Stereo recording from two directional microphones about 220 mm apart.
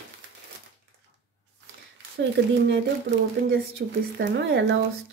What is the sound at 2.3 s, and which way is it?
Speech, 50° right (ahead or behind).